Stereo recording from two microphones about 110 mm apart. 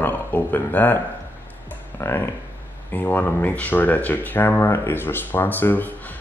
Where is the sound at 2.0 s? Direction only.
20° left (ahead or behind).